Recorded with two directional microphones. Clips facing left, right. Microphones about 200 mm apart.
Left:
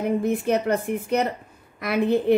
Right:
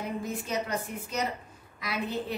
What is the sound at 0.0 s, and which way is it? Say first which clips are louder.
A woman's voice: left 12 dB; 60° left (ahead or behind).